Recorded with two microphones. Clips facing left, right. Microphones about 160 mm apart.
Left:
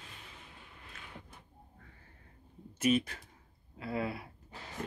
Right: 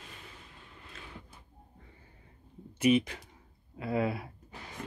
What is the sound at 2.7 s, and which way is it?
Speech, 10° right (ahead or behind).